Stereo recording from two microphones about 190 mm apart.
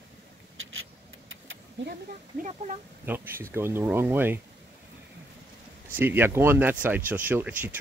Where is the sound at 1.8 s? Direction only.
75° right (ahead or behind).